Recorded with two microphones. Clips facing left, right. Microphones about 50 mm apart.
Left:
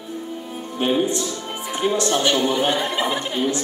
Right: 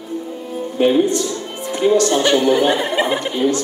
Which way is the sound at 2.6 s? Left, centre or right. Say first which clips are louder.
Right 5 dB; right.